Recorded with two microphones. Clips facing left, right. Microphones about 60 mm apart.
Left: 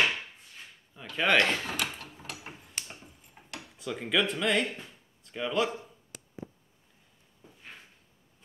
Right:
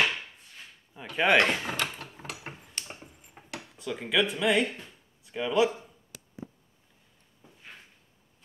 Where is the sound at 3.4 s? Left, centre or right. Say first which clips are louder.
Right 4 dB; right.